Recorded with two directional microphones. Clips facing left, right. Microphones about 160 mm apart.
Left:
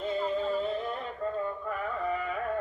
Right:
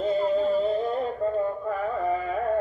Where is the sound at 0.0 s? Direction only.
40° right (ahead or behind).